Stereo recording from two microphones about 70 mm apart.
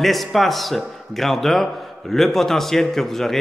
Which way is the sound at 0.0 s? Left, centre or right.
Centre.